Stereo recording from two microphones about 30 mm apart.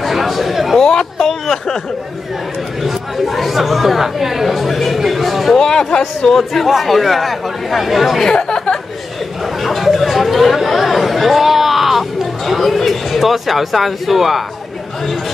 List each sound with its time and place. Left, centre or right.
0.0 s chatter: centre
0.7 s speech: left
2.8 s chatter: centre
5.6 s speech: centre
6.3 s speech: centre
8.4 s a sound: left
9.6 s chatter: centre